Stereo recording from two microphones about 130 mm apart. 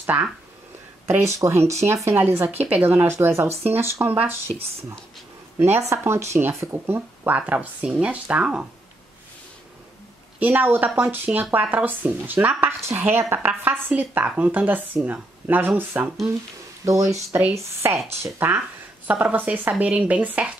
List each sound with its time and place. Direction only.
0.0 s speech: 10° right (ahead or behind)
2.6 s speech: 10° right (ahead or behind)
4.5 s speech: 10° left (ahead or behind)
5.6 s speech: 20° right (ahead or behind)
10.4 s speech: 15° right (ahead or behind)